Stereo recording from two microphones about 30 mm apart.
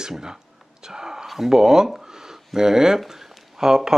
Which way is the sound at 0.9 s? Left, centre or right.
Right.